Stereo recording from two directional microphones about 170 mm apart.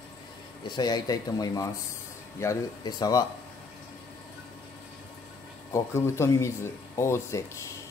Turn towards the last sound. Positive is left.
turn(degrees=15)  # may be behind; listen again after turning